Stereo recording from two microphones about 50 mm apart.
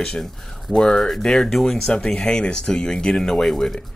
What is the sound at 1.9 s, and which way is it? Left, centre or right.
Speech, centre.